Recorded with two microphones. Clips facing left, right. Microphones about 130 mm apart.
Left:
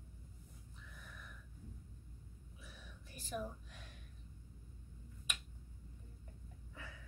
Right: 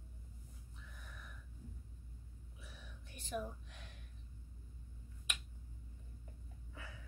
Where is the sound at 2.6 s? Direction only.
Centre (ahead or behind).